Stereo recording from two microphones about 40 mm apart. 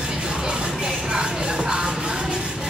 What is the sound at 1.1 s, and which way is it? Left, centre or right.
Music, right.